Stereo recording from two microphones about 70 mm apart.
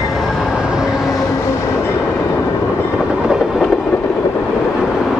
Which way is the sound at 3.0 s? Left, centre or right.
Centre.